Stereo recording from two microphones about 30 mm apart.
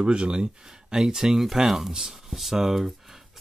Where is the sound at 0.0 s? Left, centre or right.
Right.